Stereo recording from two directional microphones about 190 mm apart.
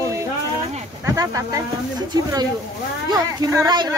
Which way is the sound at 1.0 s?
15° right (ahead or behind).